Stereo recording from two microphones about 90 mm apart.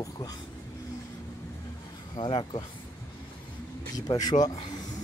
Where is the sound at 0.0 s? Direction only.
40° left (ahead or behind).